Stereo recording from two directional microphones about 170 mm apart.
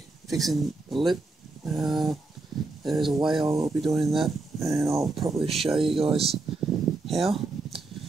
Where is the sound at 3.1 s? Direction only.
25° right (ahead or behind).